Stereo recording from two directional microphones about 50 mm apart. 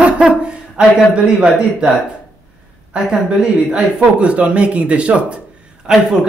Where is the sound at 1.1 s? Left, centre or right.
Centre.